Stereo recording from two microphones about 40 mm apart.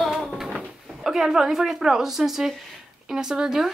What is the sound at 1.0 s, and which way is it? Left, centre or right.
A woman's voice, centre.